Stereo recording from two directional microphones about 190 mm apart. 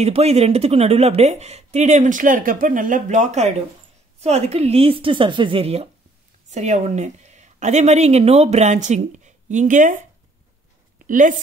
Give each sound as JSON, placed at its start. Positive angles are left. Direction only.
{"t": 0.0, "sound": "speech", "side_deg": -35}
{"t": 11.1, "sound": "speech", "side_deg": -45}